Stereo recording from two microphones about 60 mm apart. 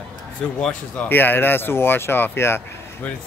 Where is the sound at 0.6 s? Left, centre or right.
Centre.